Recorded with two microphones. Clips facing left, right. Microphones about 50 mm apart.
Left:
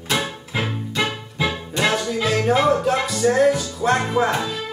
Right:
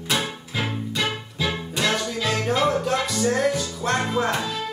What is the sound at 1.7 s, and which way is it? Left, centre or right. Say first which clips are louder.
Music: left 4 dB; centre.